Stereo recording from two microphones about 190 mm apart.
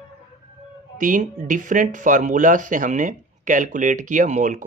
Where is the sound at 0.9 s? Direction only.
45° right (ahead or behind).